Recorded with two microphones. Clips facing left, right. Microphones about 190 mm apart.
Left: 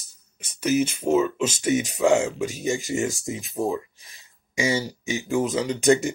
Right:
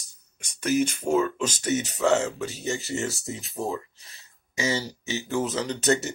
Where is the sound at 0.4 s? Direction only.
10° left (ahead or behind).